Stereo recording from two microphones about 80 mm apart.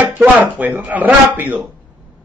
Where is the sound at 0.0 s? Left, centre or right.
Right.